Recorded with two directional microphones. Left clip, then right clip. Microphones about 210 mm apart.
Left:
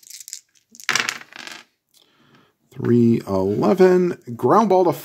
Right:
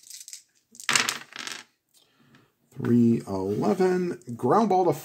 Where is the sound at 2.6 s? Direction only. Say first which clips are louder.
Left 6 dB; 40° left (ahead or behind).